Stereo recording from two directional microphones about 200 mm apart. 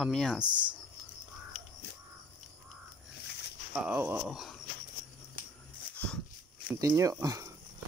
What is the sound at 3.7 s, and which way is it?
Speech, 5° right (ahead or behind).